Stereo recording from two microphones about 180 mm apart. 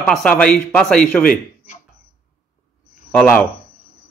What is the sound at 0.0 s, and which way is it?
Speech, 5° left (ahead or behind).